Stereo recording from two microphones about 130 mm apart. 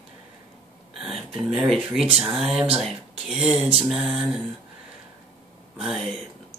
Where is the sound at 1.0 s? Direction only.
Centre (ahead or behind).